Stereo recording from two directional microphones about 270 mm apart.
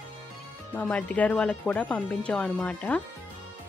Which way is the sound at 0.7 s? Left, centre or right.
Centre.